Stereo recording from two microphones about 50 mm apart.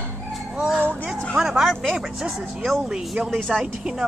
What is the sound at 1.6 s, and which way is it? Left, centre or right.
Speech, centre.